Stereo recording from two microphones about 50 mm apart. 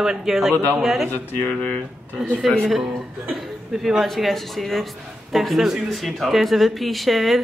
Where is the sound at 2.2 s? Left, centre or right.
Centre.